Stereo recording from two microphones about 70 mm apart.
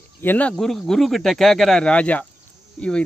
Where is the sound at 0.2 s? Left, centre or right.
Left.